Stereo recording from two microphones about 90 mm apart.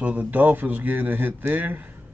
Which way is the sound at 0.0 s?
15° right (ahead or behind).